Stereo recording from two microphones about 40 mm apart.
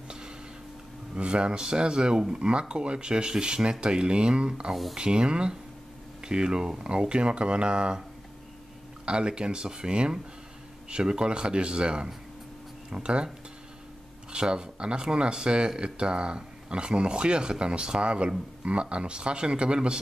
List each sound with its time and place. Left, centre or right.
1.1 s speech: right
9.0 s speech: right
14.3 s speech: right